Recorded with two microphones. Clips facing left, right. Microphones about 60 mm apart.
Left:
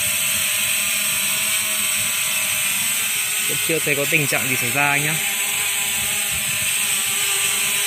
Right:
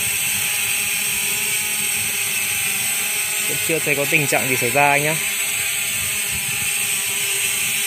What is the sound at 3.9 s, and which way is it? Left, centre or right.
Speech, centre.